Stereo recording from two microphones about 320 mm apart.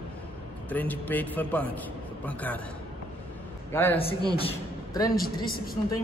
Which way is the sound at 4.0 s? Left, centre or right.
Centre.